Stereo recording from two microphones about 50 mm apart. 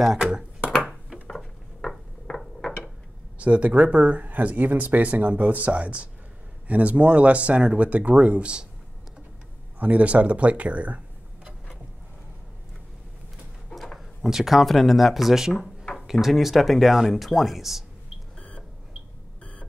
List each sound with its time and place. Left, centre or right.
0.0 s speech: centre
1.3 s mechanisms: centre
3.3 s speech: right
9.8 s speech: right
13.9 s speech: centre